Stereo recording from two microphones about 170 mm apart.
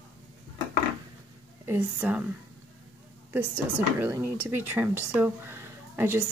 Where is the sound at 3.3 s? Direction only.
10° right (ahead or behind).